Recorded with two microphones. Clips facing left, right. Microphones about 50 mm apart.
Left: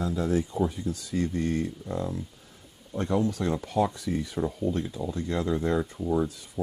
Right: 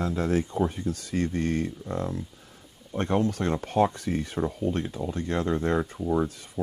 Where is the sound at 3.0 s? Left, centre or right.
Right.